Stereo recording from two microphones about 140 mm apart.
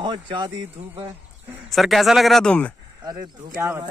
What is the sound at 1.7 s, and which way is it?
Speech, centre (ahead or behind).